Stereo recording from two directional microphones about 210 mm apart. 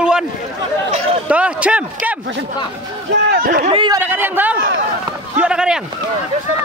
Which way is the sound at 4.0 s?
10° right (ahead or behind).